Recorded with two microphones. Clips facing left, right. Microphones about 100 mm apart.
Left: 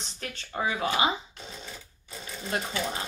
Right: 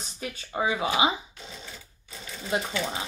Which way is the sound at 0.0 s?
10° right (ahead or behind).